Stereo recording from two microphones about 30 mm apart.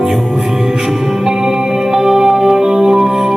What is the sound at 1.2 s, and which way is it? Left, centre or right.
Music, centre.